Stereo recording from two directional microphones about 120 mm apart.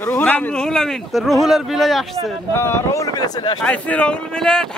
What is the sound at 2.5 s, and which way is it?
Speech, 20° left (ahead or behind).